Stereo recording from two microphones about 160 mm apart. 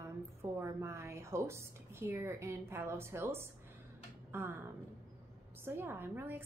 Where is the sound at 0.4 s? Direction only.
15° right (ahead or behind).